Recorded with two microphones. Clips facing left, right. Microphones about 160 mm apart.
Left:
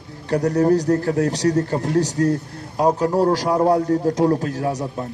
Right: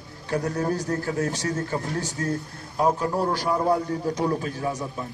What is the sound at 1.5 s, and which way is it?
A man's voice, 40° left (ahead or behind).